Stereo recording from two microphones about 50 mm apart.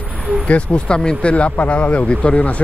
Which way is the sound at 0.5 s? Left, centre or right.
Left.